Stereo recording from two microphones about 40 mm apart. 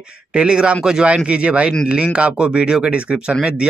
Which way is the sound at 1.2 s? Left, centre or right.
Right.